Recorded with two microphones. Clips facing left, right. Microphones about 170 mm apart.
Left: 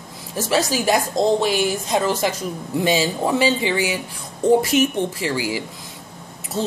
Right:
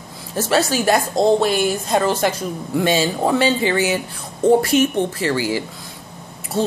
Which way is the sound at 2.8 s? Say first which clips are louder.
Right 2 dB; 15° left (ahead or behind).